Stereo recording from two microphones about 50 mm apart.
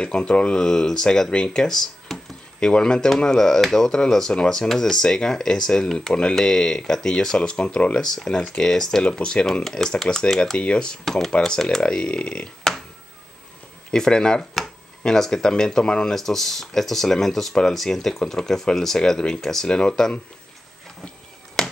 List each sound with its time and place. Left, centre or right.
0.0 s speech: centre
8.0 s speech: centre
11.1 s speech: centre
12.7 s a sound: centre
13.9 s speech: centre
21.6 s a sound: centre